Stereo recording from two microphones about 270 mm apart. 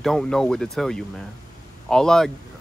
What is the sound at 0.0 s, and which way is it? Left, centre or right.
Speech, centre.